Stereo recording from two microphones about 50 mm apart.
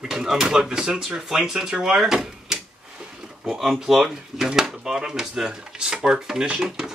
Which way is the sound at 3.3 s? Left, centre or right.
Centre.